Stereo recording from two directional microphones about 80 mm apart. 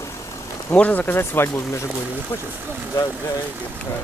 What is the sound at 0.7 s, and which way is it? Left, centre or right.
Speech, centre.